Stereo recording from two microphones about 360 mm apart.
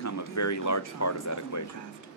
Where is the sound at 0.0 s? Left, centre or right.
Left.